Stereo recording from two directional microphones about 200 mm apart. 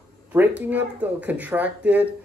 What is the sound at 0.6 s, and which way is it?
Speech, 10° right (ahead or behind).